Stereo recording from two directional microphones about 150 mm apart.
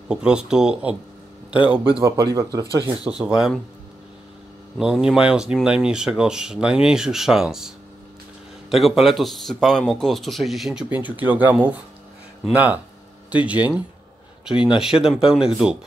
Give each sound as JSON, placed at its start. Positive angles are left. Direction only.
{"t": 0.1, "sound": "speech", "side_deg": -5}
{"t": 2.6, "sound": "speech", "side_deg": 20}
{"t": 3.1, "sound": "speech", "side_deg": -5}
{"t": 4.7, "sound": "speech", "side_deg": -5}